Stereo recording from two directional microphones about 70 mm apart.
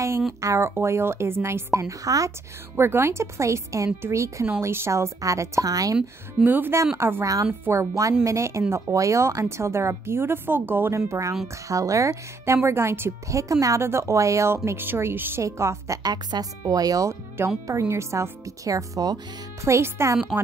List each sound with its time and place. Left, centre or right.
0.4 s a woman's voice: right
2.7 s a woman's voice: right
6.4 s a woman's voice: right
7.9 s speech: right
11.0 s speech: right
12.6 s a woman's voice: right
13.3 s speech: right
13.8 s a woman's voice: right
16.0 s speech: right
17.6 s speech: right
19.6 s speech: right